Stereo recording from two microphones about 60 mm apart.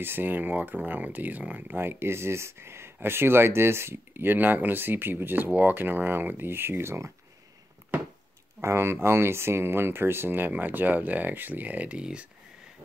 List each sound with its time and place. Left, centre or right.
0.0 s speech: right
1.8 s speech: right
8.5 s speech: right; by 12.3 s centre